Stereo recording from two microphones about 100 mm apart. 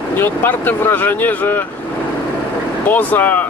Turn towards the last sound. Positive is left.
turn(degrees=20)  # may be behind; listen again after turning